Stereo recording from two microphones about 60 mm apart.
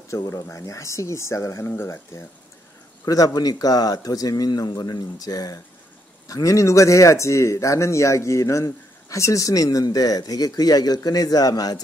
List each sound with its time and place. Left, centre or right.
0.1 s speech: left
3.1 s speech: left
6.2 s speech: left